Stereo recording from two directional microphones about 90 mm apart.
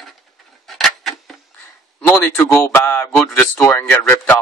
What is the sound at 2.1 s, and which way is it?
Speech, 25° left (ahead or behind).